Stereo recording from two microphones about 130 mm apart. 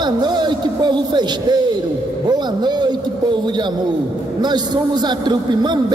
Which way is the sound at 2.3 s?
35° right (ahead or behind).